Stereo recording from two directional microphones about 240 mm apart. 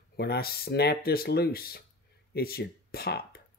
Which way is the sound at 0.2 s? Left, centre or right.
Left.